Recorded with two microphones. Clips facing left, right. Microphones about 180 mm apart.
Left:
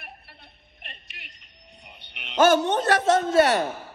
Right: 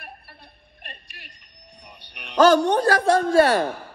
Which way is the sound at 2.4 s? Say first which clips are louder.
Right 3 dB; 35° right (ahead or behind).